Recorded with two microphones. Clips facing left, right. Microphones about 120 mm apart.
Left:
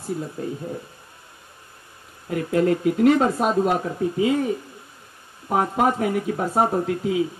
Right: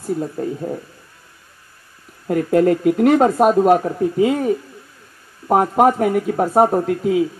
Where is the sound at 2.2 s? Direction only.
50° right (ahead or behind).